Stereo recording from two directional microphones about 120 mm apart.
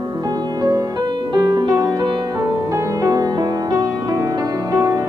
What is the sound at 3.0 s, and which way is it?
Music, 30° right (ahead or behind).